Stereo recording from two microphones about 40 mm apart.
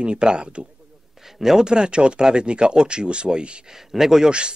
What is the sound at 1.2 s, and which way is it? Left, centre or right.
Speech, centre.